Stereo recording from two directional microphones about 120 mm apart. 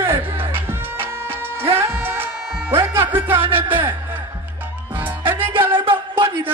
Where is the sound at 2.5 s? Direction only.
5° right (ahead or behind).